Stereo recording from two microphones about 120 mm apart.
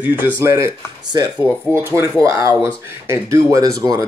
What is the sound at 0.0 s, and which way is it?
Speech, 15° right (ahead or behind).